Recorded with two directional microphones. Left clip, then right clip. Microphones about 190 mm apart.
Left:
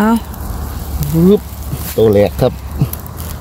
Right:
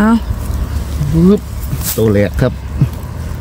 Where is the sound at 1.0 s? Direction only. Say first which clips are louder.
Right 1 dB; 65° left (ahead or behind).